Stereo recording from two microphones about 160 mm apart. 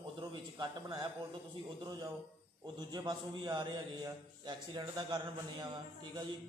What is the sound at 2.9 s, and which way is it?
Mantra, 30° right (ahead or behind).